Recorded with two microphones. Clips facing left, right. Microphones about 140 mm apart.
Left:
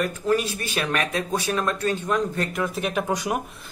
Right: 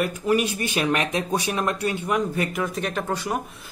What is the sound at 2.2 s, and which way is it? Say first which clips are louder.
Speech: even; centre (ahead or behind).